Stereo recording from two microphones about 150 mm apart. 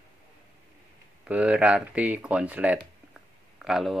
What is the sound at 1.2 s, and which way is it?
Speech, 10° right (ahead or behind).